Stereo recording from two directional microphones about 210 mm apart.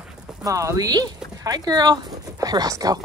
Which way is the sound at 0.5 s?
15° right (ahead or behind).